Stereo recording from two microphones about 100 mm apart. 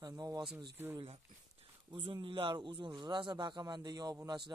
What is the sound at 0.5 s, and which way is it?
Speech, 20° right (ahead or behind).